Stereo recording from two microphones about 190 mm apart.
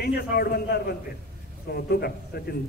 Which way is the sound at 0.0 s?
55° left (ahead or behind).